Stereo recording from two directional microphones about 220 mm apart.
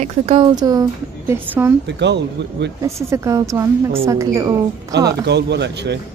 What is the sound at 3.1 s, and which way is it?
Speech, 15° right (ahead or behind).